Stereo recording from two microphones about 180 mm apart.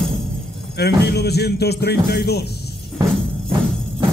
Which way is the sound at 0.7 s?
65° left (ahead or behind).